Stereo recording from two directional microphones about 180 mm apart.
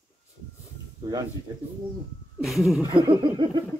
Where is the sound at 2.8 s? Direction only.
25° right (ahead or behind).